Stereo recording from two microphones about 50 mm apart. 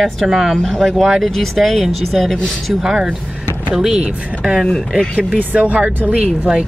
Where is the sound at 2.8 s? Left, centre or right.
Centre.